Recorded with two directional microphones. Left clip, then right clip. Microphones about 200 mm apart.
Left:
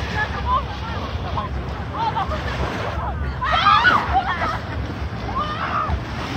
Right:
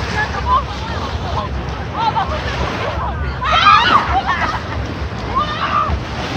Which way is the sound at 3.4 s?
55° left (ahead or behind).